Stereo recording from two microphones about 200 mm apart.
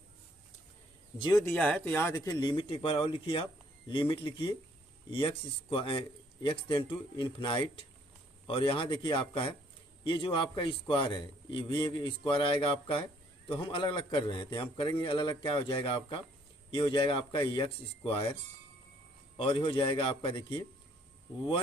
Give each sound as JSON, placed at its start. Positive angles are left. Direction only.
{"t": 1.1, "sound": "a man's voice", "side_deg": 20}
{"t": 1.5, "sound": "a man's voice", "side_deg": 5}
{"t": 19.3, "sound": "a man's voice", "side_deg": 30}